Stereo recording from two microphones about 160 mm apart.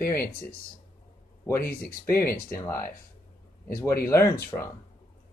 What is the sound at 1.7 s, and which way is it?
Speech, 70° left (ahead or behind).